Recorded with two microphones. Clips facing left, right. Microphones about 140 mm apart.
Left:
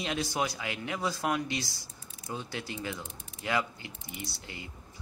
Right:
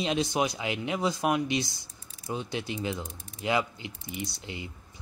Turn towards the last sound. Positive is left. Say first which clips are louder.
# right 5 dB
turn(degrees=-20)  # may be behind; listen again after turning